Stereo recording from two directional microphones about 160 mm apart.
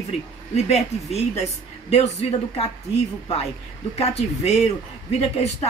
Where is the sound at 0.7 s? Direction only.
40° left (ahead or behind).